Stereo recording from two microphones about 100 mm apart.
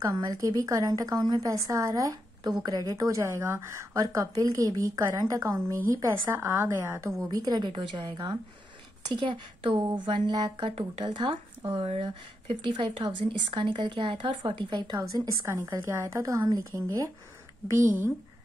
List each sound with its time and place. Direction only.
0.0 s speech: 40° right (ahead or behind)
1.2 s a woman's voice: 45° right (ahead or behind)
1.5 s a woman's voice: 35° right (ahead or behind)
7.2 s a woman's voice: 45° right (ahead or behind)
10.7 s speech: 90° right
11.1 s speech: 55° right (ahead or behind)
15.0 s a woman's voice: 30° right (ahead or behind)
17.6 s a woman's voice: 20° right (ahead or behind)